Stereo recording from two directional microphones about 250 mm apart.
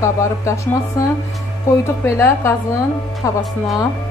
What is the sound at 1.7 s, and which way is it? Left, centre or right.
A woman's voice, centre.